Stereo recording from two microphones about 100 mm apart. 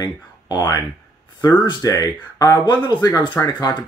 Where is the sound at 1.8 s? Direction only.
35° left (ahead or behind).